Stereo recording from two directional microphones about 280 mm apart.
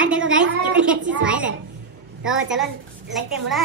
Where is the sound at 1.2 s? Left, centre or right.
Centre.